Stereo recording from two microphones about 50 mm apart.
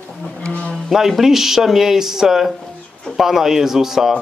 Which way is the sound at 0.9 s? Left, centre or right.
Centre.